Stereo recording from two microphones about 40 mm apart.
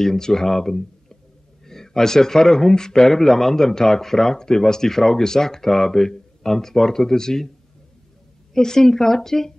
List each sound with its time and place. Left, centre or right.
0.0 s speech: centre
8.5 s speech: centre